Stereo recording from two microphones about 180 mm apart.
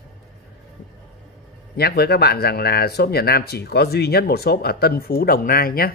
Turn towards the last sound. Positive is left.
turn(degrees=55)  # may be behind; listen again after turning